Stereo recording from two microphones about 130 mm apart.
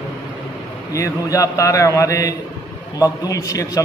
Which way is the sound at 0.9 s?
25° left (ahead or behind).